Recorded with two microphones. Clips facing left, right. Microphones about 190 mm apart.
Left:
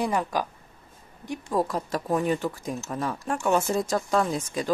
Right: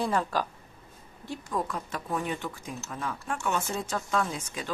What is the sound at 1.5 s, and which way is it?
Speech, 35° left (ahead or behind).